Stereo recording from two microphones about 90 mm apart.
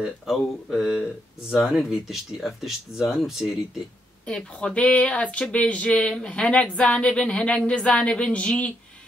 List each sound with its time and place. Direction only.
0.0 s speech: centre (ahead or behind)
4.3 s speech: 10° left (ahead or behind)